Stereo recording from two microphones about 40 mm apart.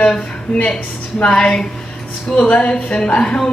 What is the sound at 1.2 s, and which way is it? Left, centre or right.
Speech, left.